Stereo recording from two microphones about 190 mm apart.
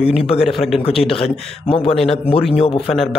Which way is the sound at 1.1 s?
30° left (ahead or behind).